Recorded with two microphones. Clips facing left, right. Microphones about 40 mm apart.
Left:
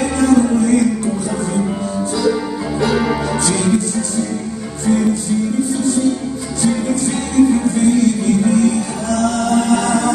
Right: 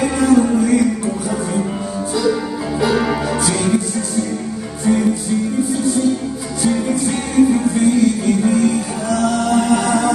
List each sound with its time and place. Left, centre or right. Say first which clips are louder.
0.0 s music: even; centre
2.8 s music: even; centre
6.6 s music: even; centre